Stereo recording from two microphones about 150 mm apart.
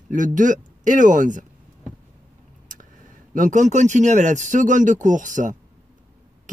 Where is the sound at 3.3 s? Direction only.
60° right (ahead or behind).